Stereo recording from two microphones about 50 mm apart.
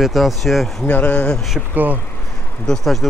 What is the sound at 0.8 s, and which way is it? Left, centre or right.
Speech, left.